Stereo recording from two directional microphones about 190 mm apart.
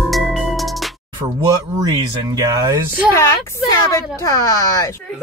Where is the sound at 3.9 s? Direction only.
15° left (ahead or behind).